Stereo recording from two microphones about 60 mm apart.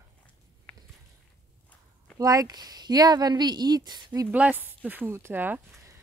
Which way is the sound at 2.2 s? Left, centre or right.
Right.